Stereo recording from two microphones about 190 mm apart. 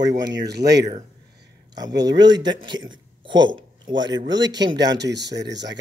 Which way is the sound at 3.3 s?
80° right.